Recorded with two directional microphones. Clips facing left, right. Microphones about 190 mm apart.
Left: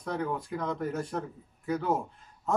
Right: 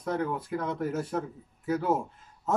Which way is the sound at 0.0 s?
5° right (ahead or behind).